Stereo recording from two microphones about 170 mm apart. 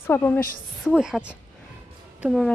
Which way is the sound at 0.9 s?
5° right (ahead or behind).